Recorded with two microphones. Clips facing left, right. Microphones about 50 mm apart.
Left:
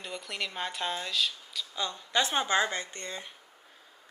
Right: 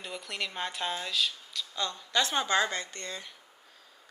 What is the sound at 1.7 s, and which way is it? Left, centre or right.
A woman's voice, centre.